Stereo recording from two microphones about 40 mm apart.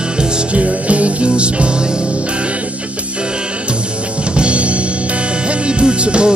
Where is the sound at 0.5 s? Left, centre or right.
Right.